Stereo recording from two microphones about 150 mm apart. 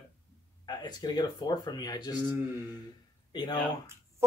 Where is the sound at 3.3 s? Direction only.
25° left (ahead or behind).